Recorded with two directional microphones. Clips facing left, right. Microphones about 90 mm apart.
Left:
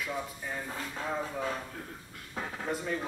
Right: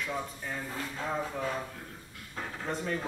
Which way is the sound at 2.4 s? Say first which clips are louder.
Left 2 dB; 10° left (ahead or behind).